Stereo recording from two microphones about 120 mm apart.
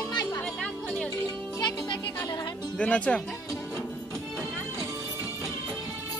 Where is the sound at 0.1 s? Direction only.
35° left (ahead or behind).